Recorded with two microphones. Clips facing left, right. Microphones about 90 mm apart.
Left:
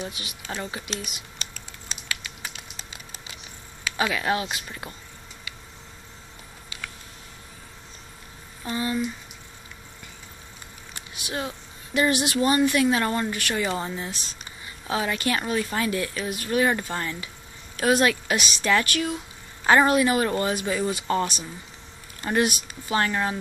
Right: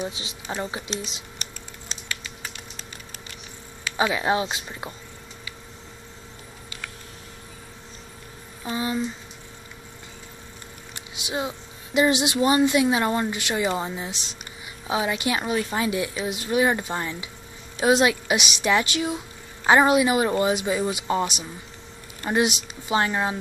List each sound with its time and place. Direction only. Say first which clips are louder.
0.0 s speech: right 3 dB; 25° right (ahead or behind)
3.9 s speech: right 2 dB; 20° right (ahead or behind)
8.6 s speech: even; 15° right (ahead or behind)
11.0 s speech: right 2 dB; 20° right (ahead or behind)